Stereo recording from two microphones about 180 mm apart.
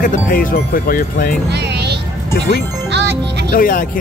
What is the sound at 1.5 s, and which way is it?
Music, 70° right (ahead or behind).